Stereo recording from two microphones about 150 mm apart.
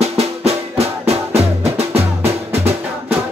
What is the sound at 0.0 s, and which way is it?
Music, 45° right (ahead or behind).